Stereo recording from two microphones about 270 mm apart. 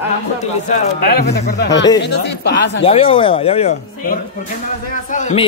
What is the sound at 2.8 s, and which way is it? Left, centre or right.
Speech, left.